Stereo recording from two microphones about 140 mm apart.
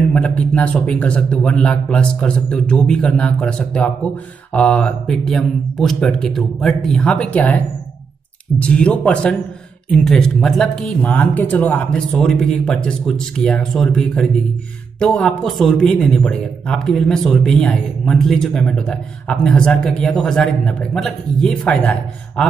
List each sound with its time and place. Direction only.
0.1 s a man's voice: 10° left (ahead or behind)
8.5 s a man's voice: 10° left (ahead or behind)